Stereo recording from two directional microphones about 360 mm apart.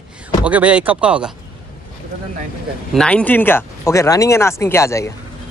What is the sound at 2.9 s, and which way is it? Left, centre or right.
Speech, centre.